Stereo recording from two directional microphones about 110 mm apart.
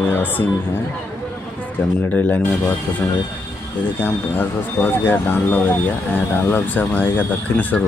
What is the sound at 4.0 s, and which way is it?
Speech, 20° left (ahead or behind).